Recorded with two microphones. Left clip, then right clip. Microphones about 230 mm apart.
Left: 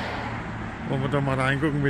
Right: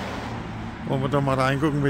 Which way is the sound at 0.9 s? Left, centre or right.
Centre.